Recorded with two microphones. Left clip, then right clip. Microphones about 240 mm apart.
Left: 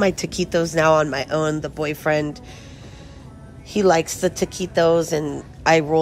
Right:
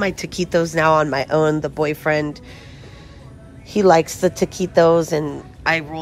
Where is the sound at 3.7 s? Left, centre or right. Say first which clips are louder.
Right 3 dB; centre.